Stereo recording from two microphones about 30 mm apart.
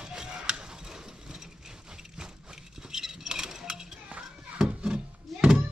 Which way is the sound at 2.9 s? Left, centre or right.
Centre.